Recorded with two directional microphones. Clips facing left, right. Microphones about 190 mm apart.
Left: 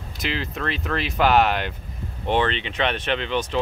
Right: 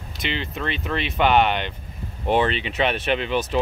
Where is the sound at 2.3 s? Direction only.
10° right (ahead or behind).